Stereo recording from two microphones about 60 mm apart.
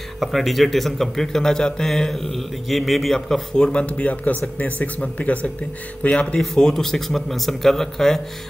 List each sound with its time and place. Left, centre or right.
0.2 s speech: centre
3.7 s speech: centre
6.4 s speech: centre